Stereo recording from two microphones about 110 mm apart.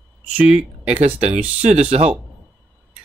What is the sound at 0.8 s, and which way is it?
Speech, 70° right (ahead or behind).